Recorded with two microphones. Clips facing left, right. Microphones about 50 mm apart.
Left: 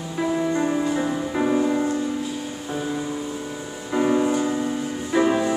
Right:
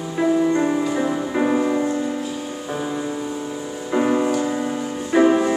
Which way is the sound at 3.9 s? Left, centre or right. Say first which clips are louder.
Right 1 dB; centre.